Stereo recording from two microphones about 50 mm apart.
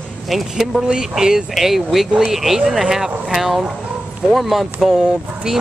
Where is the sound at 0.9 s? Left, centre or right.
Centre.